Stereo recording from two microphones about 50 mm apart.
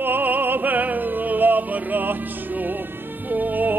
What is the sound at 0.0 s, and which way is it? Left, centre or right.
Music, right.